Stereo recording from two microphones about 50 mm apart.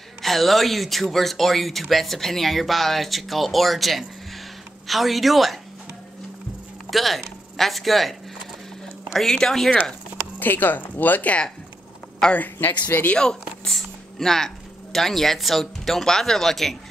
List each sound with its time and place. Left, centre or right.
0.2 s speech: centre
6.9 s speech: centre
9.3 s speech: centre
10.4 s speech: left
12.4 s speech: left
13.2 s speech: centre